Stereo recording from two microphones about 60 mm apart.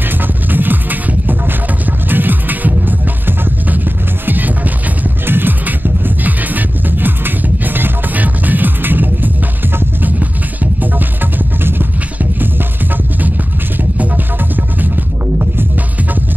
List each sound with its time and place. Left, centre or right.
0.5 s music: right